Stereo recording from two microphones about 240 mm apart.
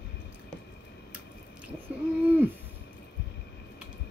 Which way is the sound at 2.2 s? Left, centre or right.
Centre.